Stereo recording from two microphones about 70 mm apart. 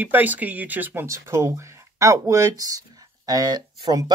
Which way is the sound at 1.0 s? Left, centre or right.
Right.